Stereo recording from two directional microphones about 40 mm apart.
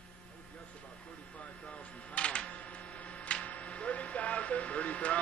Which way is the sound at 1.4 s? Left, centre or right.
Left.